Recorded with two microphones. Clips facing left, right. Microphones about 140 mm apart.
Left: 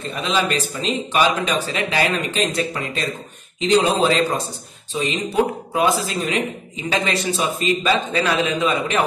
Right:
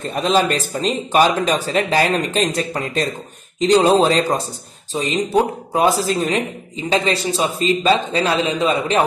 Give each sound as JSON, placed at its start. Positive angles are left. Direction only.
{"t": 0.1, "sound": "speech", "side_deg": -40}